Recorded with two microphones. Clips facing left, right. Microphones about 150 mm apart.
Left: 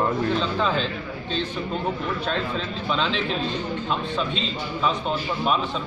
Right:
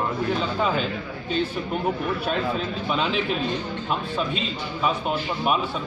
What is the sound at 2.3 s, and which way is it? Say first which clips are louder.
A man's voice: right 2 dB; 10° right (ahead or behind).